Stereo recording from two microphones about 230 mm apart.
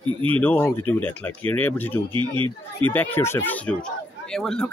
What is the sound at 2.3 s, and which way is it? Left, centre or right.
Speech, right.